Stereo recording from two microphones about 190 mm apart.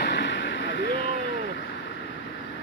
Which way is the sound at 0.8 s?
50° left (ahead or behind).